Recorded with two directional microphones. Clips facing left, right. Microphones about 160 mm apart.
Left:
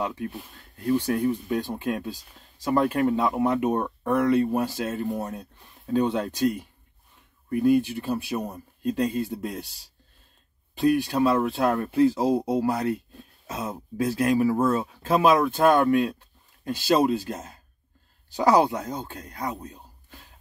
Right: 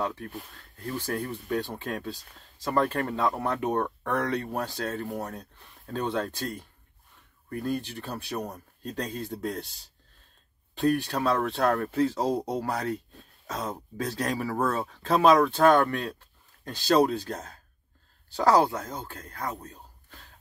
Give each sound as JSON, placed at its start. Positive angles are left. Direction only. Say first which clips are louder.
{"t": 0.0, "sound": "speech", "louder": "left 2 dB", "side_deg": 15}
{"t": 10.8, "sound": "speech", "louder": "left 4 dB", "side_deg": 10}
{"t": 18.3, "sound": "speech", "louder": "left 2 dB", "side_deg": 15}